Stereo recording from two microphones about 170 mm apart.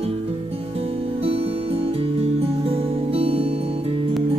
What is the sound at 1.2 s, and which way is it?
Music, 35° right (ahead or behind).